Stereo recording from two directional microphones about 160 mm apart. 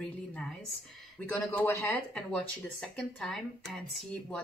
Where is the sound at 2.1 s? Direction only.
5° left (ahead or behind).